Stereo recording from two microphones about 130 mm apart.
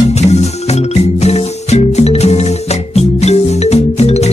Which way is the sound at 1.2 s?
55° left (ahead or behind).